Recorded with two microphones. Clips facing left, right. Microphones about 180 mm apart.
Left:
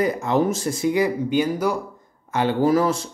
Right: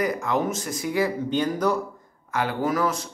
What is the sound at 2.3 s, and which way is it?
Speech, 25° left (ahead or behind).